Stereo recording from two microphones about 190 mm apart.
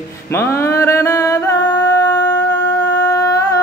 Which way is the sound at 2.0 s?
20° left (ahead or behind).